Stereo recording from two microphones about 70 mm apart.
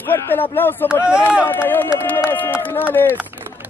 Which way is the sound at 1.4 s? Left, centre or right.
Left.